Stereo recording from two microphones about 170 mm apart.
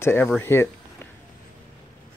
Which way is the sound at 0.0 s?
15° left (ahead or behind).